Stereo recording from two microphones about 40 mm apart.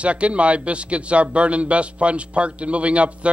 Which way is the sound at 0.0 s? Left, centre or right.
Right.